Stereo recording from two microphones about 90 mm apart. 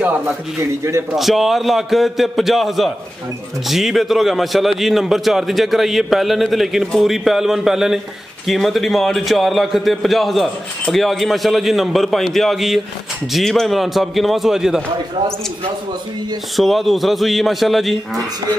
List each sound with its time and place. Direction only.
0.6 s a man's voice: 30° right (ahead or behind)
1.1 s a man's voice: centre (ahead or behind)
16.5 s a man's voice: centre (ahead or behind)